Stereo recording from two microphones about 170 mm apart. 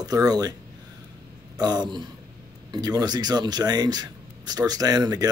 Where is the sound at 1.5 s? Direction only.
25° right (ahead or behind).